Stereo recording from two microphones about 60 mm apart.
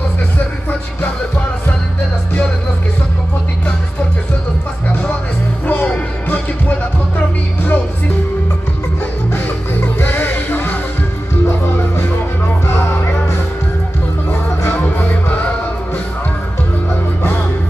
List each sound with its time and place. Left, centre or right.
4.8 s music: left
9.3 s music: left
12.6 s music: left
14.8 s music: left